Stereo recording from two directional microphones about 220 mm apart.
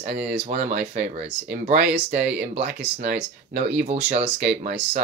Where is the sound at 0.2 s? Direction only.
30° right (ahead or behind).